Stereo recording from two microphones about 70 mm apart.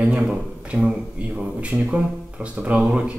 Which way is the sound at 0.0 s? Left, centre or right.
Centre.